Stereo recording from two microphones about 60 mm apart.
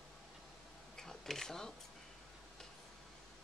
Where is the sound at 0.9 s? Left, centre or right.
Centre.